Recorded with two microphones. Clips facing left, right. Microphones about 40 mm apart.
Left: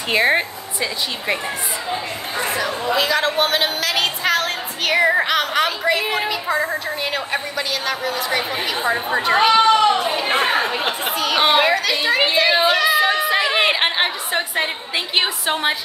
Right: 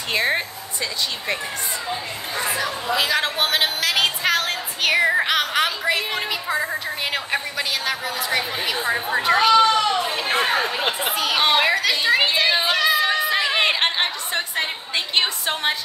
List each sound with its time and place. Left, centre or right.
0.1 s a woman's voice: centre
3.0 s a woman's voice: centre
9.4 s a woman's voice: centre
11.1 s a woman's voice: centre